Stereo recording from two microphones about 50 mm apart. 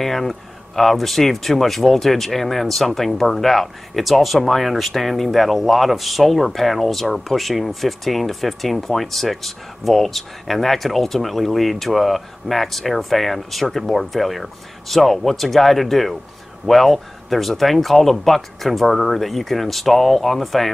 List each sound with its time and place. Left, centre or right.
0.0 s speech: centre